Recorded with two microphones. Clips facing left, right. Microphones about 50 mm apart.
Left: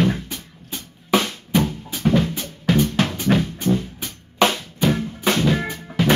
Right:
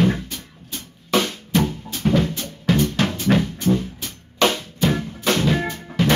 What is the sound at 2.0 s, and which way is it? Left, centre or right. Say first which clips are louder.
Drum: left 1 dB; centre.